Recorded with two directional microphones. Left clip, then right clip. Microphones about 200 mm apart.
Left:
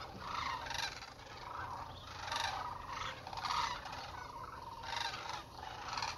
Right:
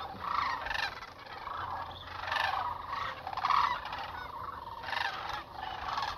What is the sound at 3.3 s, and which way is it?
Fowl, 10° left (ahead or behind).